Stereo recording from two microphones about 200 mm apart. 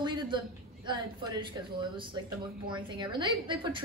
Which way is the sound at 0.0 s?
20° right (ahead or behind).